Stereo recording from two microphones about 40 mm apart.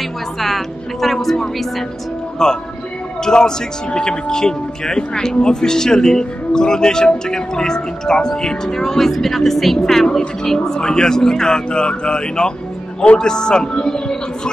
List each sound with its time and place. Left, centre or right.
0.4 s a woman's voice: centre
2.4 s speech: centre